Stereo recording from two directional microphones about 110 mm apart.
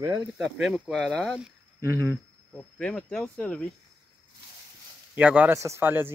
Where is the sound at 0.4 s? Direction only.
5° right (ahead or behind).